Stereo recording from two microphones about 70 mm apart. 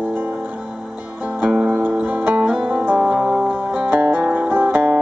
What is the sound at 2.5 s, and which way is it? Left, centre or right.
Music, centre.